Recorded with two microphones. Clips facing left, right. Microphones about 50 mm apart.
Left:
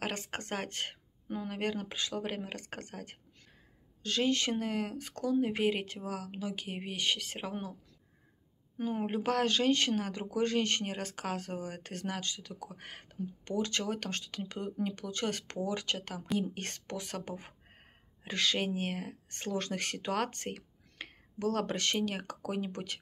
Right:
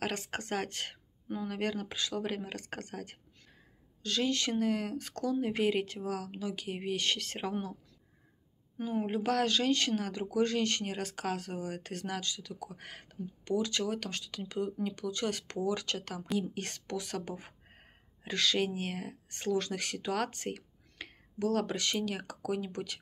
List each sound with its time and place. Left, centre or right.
0.0 s speech: left; by 7.7 s centre
8.7 s a woman's voice: left
9.0 s speech: left